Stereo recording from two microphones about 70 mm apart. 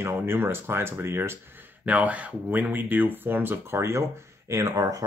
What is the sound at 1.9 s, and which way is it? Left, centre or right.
Speech, right.